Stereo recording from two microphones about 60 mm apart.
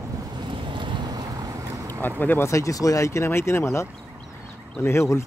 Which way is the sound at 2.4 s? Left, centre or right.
Left.